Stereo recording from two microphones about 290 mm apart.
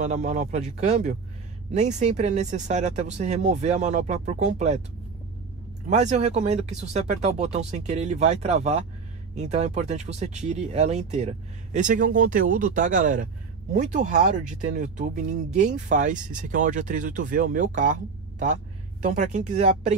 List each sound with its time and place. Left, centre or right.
0.0 s speech: right
5.9 s speech: right